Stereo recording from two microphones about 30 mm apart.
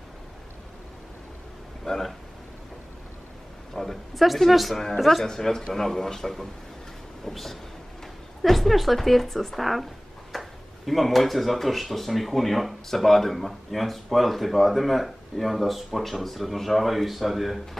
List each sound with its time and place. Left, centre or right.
3.7 s speech: centre
4.1 s speech: centre
4.7 s speech: centre
5.2 s speech: centre
10.3 s a sound: centre
10.9 s speech: centre